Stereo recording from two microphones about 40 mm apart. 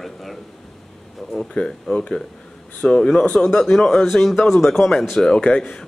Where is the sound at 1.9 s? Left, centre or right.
Left; by 5.0 s centre.